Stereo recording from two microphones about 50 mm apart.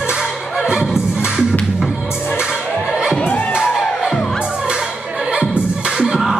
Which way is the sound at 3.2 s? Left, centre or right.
Left.